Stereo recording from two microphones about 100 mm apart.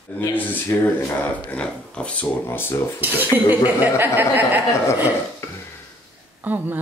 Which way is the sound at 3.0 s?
20° right (ahead or behind).